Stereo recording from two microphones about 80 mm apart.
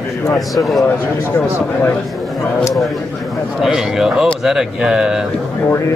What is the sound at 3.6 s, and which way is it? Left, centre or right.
Speech, centre.